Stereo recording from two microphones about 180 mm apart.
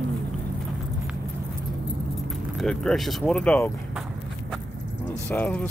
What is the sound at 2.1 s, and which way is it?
Speech, centre (ahead or behind).